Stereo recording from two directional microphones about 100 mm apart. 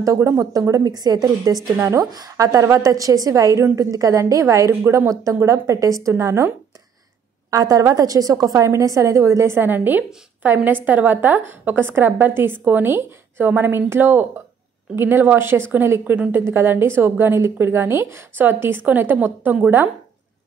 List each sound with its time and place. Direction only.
0.0 s a woman's voice: 30° right (ahead or behind)
7.5 s a woman's voice: 35° right (ahead or behind); by 19.9 s 15° right (ahead or behind)